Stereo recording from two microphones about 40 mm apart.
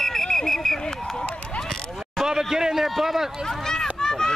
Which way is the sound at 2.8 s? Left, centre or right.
Centre.